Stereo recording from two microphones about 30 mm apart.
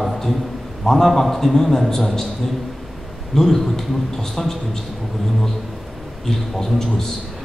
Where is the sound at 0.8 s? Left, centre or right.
Centre.